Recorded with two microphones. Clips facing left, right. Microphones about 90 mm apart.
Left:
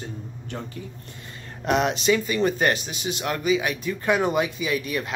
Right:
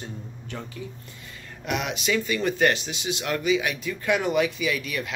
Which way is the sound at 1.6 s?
35° left (ahead or behind).